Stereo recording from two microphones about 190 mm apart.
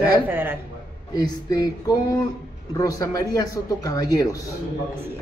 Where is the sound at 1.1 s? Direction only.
20° left (ahead or behind).